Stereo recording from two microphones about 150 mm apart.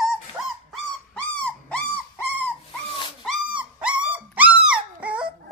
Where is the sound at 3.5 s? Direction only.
10° right (ahead or behind).